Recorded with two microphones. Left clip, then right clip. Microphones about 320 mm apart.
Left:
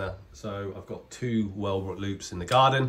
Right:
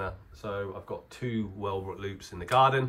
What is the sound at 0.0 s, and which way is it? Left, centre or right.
Speech, centre.